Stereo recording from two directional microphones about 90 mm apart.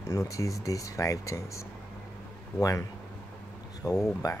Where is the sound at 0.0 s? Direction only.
35° left (ahead or behind).